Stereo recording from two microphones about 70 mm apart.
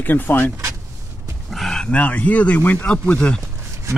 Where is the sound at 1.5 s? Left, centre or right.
Centre.